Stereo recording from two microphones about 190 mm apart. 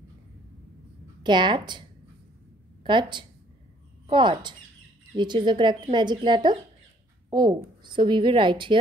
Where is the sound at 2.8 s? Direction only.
25° right (ahead or behind).